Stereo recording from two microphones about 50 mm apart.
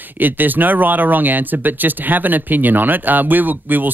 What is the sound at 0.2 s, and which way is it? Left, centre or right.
Speech, right.